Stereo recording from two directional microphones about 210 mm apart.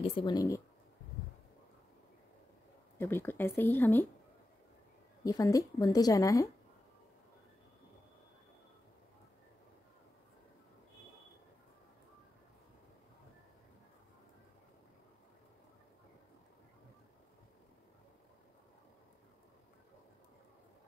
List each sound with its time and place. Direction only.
0.0 s speech: 20° left (ahead or behind)
3.0 s a woman's voice: 10° left (ahead or behind)
5.2 s a woman's voice: 15° left (ahead or behind)